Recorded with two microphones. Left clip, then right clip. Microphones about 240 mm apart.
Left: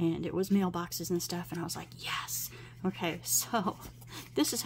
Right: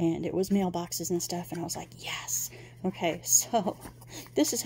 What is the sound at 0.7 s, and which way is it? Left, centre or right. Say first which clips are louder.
Speech: right 3 dB; centre.